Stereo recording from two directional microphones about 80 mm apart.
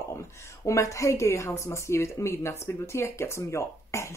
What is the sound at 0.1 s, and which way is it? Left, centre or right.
A woman's voice, left.